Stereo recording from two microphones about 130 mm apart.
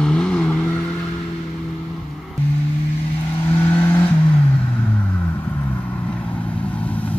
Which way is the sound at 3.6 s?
15° left (ahead or behind).